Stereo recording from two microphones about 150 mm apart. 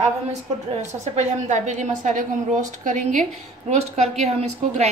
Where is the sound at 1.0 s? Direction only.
50° right (ahead or behind).